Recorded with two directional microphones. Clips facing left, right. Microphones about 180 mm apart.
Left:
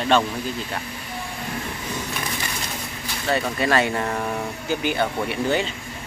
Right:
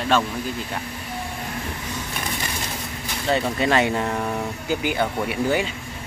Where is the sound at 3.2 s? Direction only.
20° right (ahead or behind).